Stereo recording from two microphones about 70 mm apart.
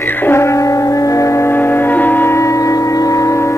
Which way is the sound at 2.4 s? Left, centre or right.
Left.